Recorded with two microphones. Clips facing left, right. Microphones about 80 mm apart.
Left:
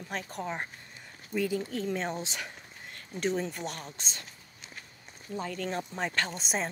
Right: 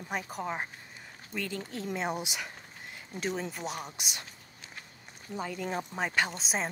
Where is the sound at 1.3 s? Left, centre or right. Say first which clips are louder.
Left 7 dB; centre.